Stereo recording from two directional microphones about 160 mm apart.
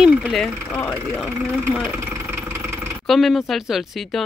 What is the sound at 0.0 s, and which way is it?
Speech, 5° right (ahead or behind).